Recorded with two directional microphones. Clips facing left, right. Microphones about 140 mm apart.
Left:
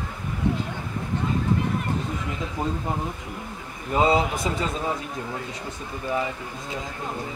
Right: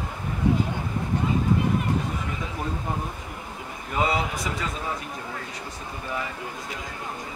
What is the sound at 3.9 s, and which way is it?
A man's voice, 25° left (ahead or behind).